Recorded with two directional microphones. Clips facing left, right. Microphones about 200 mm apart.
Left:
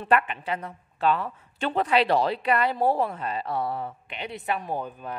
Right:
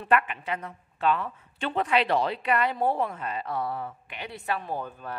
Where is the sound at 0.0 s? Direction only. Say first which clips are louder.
Left 1 dB; 30° left (ahead or behind).